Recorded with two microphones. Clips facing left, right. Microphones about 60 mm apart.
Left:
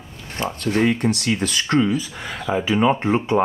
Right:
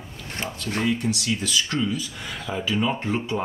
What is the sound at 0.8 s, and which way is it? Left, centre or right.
Speech, left.